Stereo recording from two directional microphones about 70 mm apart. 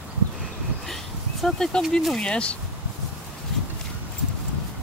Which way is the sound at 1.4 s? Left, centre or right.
Centre.